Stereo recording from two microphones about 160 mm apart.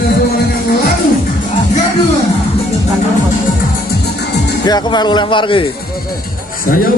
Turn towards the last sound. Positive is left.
turn(degrees=30)  # may be behind; listen again after turning